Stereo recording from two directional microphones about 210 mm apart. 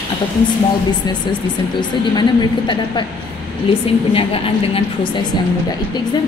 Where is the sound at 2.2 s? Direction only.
20° left (ahead or behind).